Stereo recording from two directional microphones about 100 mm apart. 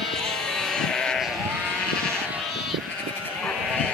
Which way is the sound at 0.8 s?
5° left (ahead or behind).